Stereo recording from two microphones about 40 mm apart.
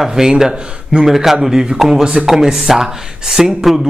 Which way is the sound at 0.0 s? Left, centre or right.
Centre.